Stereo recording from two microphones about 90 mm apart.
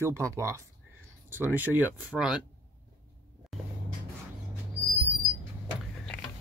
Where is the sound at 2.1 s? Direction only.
5° right (ahead or behind).